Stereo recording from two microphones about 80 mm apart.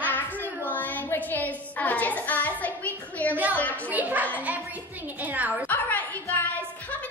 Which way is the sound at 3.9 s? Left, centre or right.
Right.